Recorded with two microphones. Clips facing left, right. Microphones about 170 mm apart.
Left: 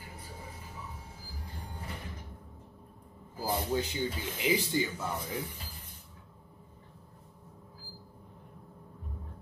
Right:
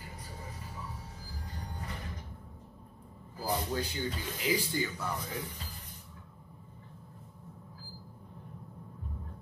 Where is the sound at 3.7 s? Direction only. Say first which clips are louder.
Left 3 dB; 25° left (ahead or behind).